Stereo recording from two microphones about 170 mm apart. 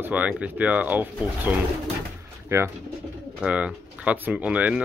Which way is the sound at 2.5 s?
15° right (ahead or behind).